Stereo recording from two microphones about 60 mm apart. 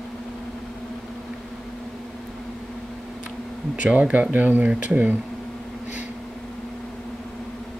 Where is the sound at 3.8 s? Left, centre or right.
Right.